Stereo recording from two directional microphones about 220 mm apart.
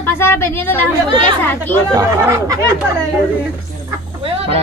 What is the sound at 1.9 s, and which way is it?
Speech, 15° right (ahead or behind).